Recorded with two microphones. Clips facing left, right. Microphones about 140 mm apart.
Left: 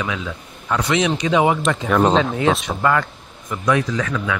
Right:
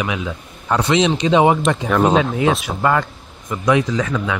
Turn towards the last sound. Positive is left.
turn(degrees=-20)  # may be behind; listen again after turning